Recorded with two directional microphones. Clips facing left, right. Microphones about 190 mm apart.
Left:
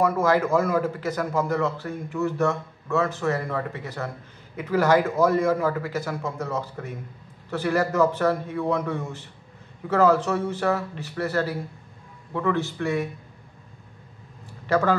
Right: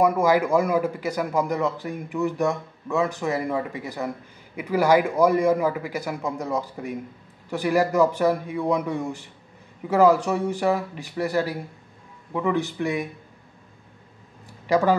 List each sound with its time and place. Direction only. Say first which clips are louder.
0.0 s a man's voice: right 2 dB; 10° right (ahead or behind)
14.7 s a man's voice: right 2 dB; 15° right (ahead or behind)